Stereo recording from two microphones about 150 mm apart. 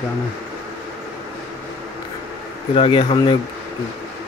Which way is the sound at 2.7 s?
35° left (ahead or behind).